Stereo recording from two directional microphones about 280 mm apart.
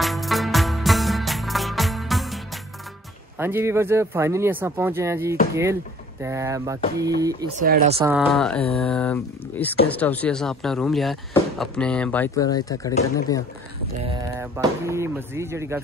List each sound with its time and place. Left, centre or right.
0.0 s music: centre
3.3 s speech: centre
7.4 s speech: right
8.0 s speech: centre
14.4 s speech: centre